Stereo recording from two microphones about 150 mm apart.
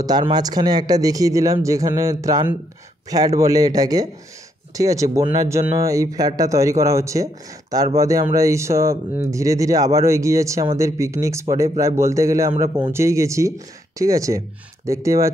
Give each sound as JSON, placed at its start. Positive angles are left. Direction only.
{"t": 0.0, "sound": "speech", "side_deg": -30}